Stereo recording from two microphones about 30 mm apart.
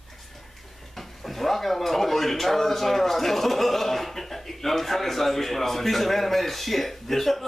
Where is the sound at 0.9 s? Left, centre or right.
Centre.